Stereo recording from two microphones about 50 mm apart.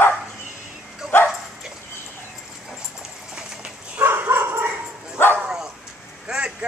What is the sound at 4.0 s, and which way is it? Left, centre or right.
Dog, right.